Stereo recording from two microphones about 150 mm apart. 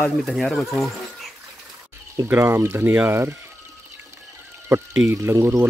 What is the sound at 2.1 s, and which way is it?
Speech, 20° right (ahead or behind).